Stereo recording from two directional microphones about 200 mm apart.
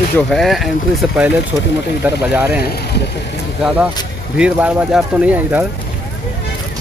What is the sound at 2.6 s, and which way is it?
Speech, 55° left (ahead or behind).